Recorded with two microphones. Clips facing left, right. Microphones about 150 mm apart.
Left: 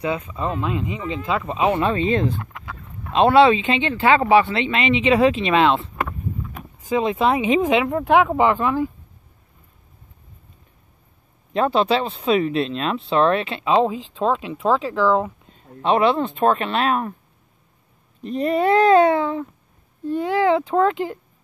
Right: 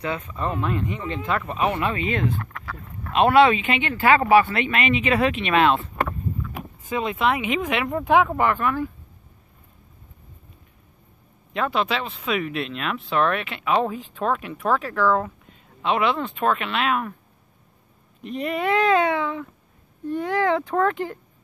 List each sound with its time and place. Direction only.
0.0 s speech: 15° left (ahead or behind)
1.5 s speech: 25° left (ahead or behind)
2.5 s a sound: 15° left (ahead or behind)
3.1 s speech: 30° left (ahead or behind)
7.0 s speech: 30° left (ahead or behind)
7.9 s speech: 5° left (ahead or behind)
8.4 s speech: 20° left (ahead or behind)
11.5 s speech: 30° left (ahead or behind); by 15.3 s 15° left (ahead or behind)
15.8 s speech: 35° left (ahead or behind)
18.2 s speech: 35° left (ahead or behind)
20.1 s speech: 20° left (ahead or behind)